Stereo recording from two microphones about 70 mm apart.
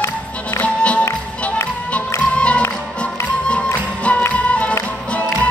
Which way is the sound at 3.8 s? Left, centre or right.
Centre.